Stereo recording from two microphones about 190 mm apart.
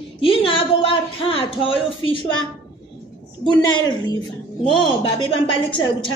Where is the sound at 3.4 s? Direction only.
25° left (ahead or behind).